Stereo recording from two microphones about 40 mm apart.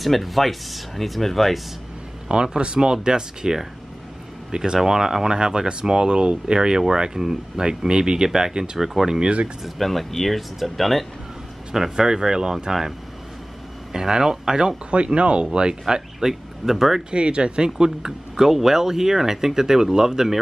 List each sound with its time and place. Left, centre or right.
0.0 s speech: centre
2.4 s speech: right
9.8 s speech: centre
11.7 s speech: centre
13.9 s speech: centre
14.9 s speech: right
15.9 s speech: centre
17.1 s speech: right